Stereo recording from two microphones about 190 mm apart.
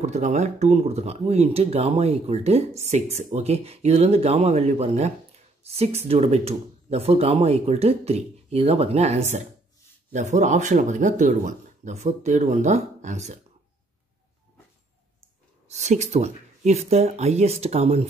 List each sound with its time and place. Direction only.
0.0 s speech: 35° right (ahead or behind)
15.7 s speech: 35° right (ahead or behind)